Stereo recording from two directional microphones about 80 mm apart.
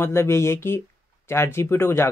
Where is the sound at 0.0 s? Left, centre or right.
Left.